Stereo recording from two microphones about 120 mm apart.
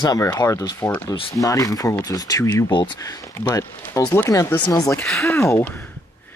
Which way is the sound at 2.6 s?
40° left (ahead or behind).